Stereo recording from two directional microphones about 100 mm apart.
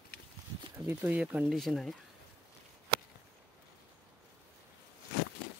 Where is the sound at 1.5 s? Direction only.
Centre (ahead or behind).